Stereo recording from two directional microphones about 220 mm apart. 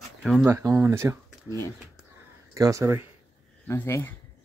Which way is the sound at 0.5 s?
15° right (ahead or behind).